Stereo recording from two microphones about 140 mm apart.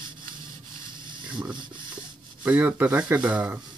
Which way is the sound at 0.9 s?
35° right (ahead or behind).